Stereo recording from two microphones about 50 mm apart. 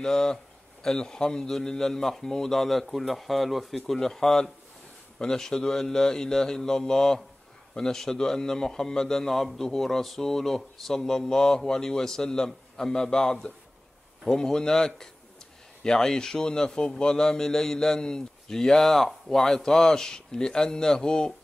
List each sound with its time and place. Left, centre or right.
0.0 s a man's voice: centre